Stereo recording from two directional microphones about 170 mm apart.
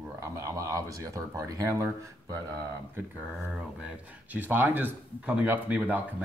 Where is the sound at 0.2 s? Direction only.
20° right (ahead or behind).